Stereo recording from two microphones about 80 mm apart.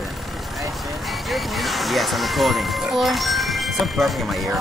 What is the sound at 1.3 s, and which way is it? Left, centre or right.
Speech, centre.